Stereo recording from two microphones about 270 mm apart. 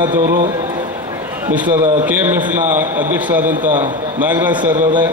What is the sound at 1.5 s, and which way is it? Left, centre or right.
A man's voice, centre.